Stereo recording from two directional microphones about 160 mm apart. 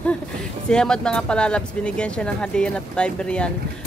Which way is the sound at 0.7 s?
5° left (ahead or behind).